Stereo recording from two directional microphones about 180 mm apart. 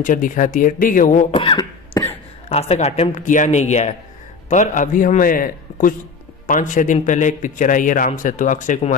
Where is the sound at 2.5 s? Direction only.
35° left (ahead or behind).